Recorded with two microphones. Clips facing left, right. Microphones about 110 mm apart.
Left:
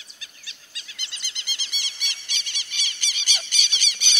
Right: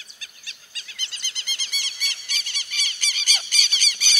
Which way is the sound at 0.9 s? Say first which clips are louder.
Right 2 dB; 40° right (ahead or behind).